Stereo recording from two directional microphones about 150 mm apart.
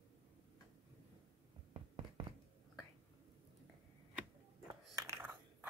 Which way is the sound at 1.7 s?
35° right (ahead or behind).